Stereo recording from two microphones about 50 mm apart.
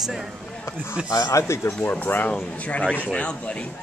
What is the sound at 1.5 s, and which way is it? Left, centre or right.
Speech, left.